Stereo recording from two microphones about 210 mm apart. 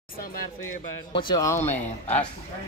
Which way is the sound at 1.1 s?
15° left (ahead or behind).